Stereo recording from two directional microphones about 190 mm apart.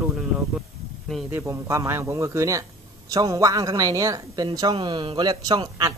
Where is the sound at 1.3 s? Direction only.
15° right (ahead or behind).